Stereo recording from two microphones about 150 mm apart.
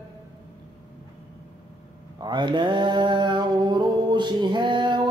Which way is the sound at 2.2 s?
30° right (ahead or behind).